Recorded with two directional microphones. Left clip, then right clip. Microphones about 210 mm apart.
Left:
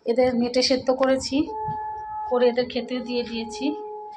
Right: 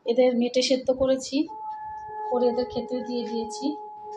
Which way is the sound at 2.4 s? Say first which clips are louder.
Left 4 dB; 10° left (ahead or behind).